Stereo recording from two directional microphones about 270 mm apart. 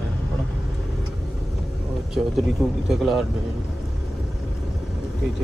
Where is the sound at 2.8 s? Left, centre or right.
Centre.